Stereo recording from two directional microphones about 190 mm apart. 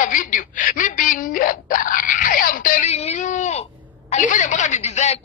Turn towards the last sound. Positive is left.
turn(degrees=35)  # may be behind; listen again after turning